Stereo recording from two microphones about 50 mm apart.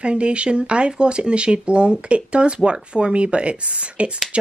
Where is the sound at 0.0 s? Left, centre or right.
Right.